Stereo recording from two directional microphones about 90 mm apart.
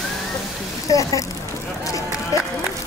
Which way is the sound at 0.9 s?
40° left (ahead or behind).